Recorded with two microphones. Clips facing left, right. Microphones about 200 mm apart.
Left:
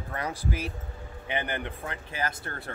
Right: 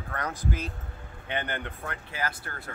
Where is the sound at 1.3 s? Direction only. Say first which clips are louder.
Left 1 dB; 15° left (ahead or behind).